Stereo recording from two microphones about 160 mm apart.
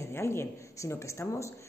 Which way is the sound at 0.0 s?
15° left (ahead or behind).